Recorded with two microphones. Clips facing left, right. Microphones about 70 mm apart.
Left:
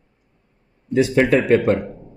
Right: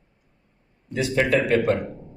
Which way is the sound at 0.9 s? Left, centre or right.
Left.